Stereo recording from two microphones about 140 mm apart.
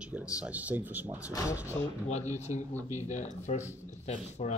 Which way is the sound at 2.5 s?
55° left (ahead or behind).